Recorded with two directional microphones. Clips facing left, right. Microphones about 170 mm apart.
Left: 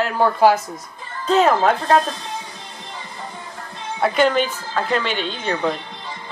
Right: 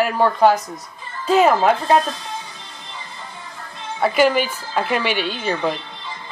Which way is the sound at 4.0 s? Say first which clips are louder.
Right 1 dB; 5° right (ahead or behind).